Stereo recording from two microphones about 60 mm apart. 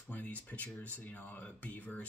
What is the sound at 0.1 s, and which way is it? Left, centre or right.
Speech, left.